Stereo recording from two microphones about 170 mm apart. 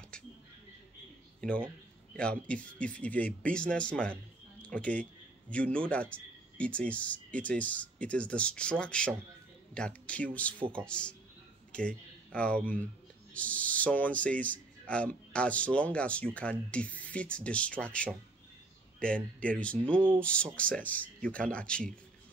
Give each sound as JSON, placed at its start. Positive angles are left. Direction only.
{"t": 1.4, "sound": "speech", "side_deg": 5}